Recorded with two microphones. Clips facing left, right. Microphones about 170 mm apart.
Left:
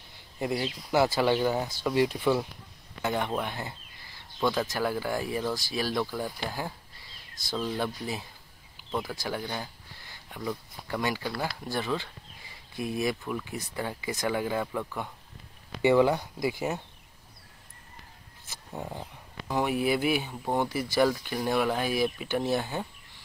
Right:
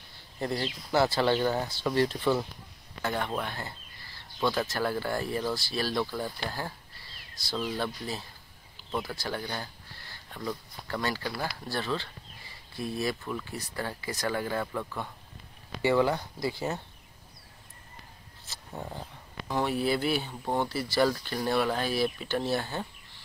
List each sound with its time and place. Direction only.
0.4 s speech: 10° left (ahead or behind)
4.4 s speech: 5° right (ahead or behind)
4.6 s speech: 10° left (ahead or behind)
7.7 s speech: 15° left (ahead or behind)
18.5 s speech: 15° left (ahead or behind)